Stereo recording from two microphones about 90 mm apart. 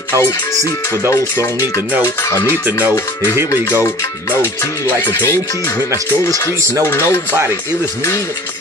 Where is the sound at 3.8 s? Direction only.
30° left (ahead or behind).